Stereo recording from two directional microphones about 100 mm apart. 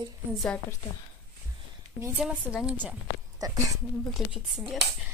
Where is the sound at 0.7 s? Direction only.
30° left (ahead or behind).